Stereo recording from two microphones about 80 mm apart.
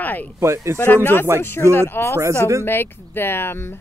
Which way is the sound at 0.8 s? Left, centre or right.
Left.